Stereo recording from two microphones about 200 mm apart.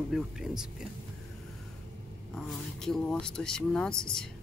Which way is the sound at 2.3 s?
5° left (ahead or behind).